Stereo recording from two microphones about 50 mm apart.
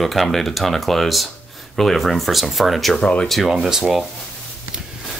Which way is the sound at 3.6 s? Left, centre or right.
Centre.